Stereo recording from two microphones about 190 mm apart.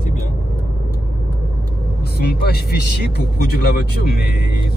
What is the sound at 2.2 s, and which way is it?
Speech, 55° left (ahead or behind).